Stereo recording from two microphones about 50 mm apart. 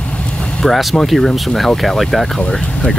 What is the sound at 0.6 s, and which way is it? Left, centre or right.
Speech, centre.